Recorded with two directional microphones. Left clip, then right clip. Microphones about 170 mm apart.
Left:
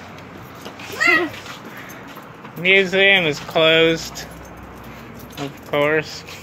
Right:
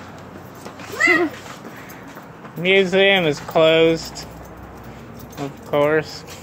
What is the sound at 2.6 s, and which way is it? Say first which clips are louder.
Speech: left 1 dB; 20° right (ahead or behind).